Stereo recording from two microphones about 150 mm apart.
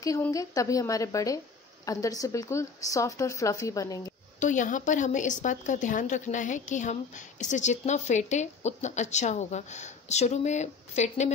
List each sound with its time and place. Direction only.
0.3 s speech: 20° left (ahead or behind)
4.4 s a woman's voice: 55° left (ahead or behind)